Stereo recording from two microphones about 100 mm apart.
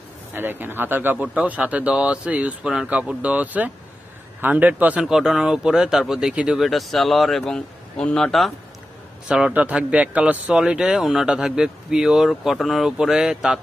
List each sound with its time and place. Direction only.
0.3 s speech: 20° right (ahead or behind)
5.0 s speech: 5° right (ahead or behind)
9.3 s speech: 10° right (ahead or behind)